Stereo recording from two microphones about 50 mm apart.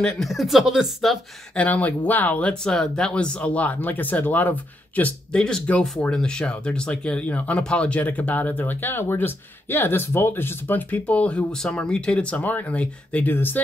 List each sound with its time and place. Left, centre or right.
0.2 s speech: centre
1.5 s speech: left
2.6 s speech: centre; by 5.8 s left
6.1 s speech: centre
7.2 s speech: left
12.4 s speech: left
13.2 s speech: left